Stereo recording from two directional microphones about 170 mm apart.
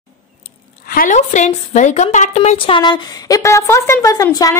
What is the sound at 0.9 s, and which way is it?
A woman's voice, 50° left (ahead or behind).